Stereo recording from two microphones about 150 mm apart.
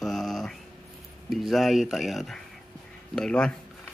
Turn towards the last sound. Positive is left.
turn(degrees=5)  # may be behind; listen again after turning